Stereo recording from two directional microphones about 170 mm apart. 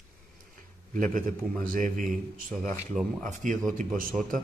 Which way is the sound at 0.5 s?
50° right (ahead or behind).